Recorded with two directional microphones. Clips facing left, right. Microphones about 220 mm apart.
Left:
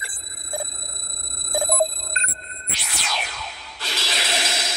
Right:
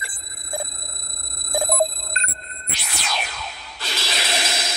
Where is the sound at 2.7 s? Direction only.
50° right (ahead or behind).